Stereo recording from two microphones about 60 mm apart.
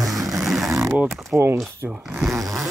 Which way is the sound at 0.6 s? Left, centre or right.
Right.